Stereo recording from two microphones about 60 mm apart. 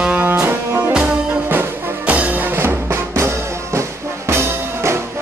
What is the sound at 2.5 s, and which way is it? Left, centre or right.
Music, right.